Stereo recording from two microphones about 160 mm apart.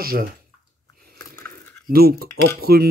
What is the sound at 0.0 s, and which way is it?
Speech, 65° right (ahead or behind).